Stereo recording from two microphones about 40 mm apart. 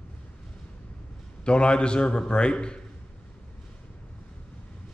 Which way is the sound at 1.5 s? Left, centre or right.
Left.